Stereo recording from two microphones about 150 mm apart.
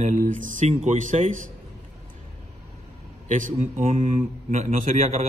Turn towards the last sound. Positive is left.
turn(degrees=-45)  # may be behind; listen again after turning